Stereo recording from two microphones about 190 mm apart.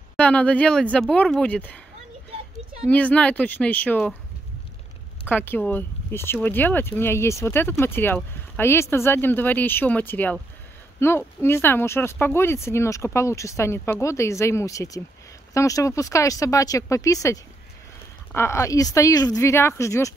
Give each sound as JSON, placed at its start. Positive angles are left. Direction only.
{"t": 0.2, "sound": "speech", "side_deg": 5}
{"t": 2.9, "sound": "speech", "side_deg": 5}
{"t": 5.3, "sound": "speech", "side_deg": 10}